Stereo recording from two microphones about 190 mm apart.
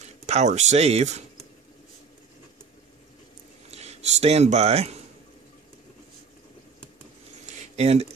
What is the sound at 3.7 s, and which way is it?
Speech, 35° right (ahead or behind).